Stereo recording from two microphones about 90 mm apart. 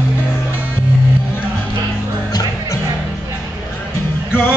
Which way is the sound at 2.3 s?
45° left (ahead or behind).